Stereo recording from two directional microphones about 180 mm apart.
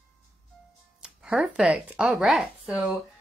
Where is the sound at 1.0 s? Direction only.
5° right (ahead or behind).